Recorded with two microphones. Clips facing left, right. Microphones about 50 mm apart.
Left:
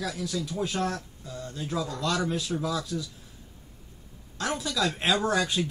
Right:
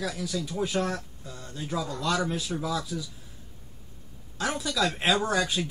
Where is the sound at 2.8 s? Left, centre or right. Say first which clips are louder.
Left 1 dB; centre.